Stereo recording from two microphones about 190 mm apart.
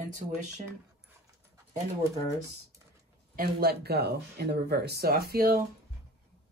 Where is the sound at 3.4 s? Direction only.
55° right (ahead or behind).